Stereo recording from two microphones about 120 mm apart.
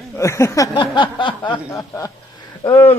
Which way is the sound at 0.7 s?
40° left (ahead or behind).